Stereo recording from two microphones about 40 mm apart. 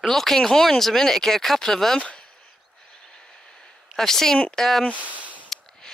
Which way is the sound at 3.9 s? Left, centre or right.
Centre.